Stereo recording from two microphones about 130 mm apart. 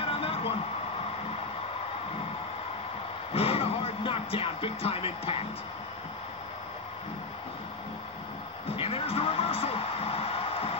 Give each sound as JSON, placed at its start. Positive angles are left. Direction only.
{"t": 0.0, "sound": "a sound", "side_deg": 45}
{"t": 3.3, "sound": "music", "side_deg": 50}
{"t": 8.7, "sound": "music", "side_deg": 50}